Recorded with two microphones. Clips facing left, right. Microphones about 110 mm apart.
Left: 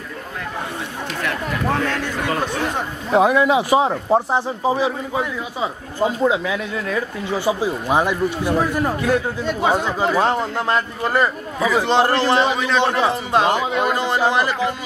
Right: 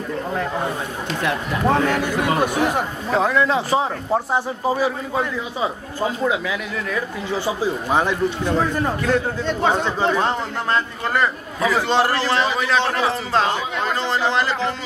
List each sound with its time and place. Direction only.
1.2 s speech: 15° right (ahead or behind)
3.1 s a man's voice: 15° left (ahead or behind)